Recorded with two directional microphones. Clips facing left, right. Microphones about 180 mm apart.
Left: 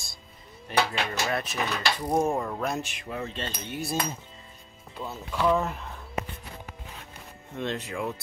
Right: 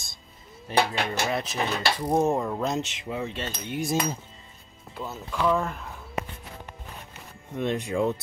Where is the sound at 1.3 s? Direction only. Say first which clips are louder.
Right 2 dB; 20° right (ahead or behind).